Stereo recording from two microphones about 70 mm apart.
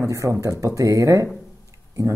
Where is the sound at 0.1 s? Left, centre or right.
Right.